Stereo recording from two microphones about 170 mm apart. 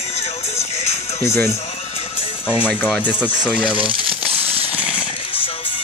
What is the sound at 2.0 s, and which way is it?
Music, 35° left (ahead or behind).